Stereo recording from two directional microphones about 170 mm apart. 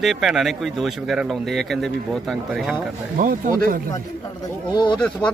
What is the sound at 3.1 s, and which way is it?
Speech, 50° right (ahead or behind).